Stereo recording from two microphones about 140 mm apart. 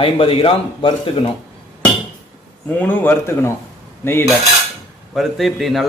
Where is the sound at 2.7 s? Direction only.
10° left (ahead or behind).